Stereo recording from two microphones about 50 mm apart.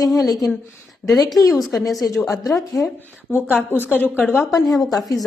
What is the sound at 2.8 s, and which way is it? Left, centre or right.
A woman's voice, left.